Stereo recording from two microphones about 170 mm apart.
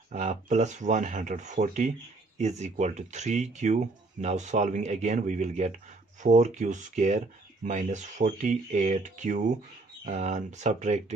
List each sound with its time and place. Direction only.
0.1 s speech: 45° right (ahead or behind)